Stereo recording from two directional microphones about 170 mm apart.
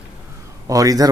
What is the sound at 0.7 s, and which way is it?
Speech, 20° right (ahead or behind).